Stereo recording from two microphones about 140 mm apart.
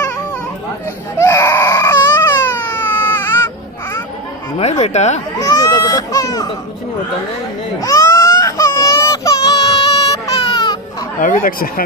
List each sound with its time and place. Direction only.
1.1 s baby cry: 20° left (ahead or behind)
4.6 s speech: 50° left (ahead or behind)
5.4 s baby cry: 25° left (ahead or behind)
7.8 s baby cry: 25° left (ahead or behind)
11.1 s speech: 80° left